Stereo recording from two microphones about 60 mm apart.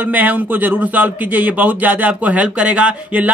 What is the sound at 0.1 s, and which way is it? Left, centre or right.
A man's voice, right.